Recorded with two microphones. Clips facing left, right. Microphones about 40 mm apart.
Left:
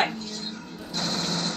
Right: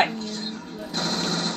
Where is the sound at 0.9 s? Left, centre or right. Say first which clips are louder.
Right 2 dB; right.